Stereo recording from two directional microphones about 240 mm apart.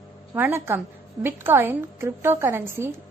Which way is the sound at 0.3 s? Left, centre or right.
Centre.